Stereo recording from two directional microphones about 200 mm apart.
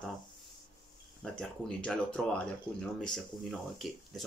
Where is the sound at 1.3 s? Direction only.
5° left (ahead or behind).